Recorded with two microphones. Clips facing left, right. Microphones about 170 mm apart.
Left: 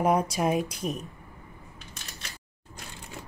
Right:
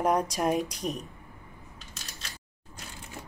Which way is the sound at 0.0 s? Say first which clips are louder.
Left 2 dB; 5° left (ahead or behind).